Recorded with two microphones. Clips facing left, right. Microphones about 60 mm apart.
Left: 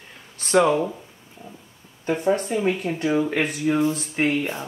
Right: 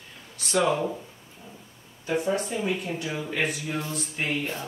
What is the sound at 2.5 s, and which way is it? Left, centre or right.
Speech, left.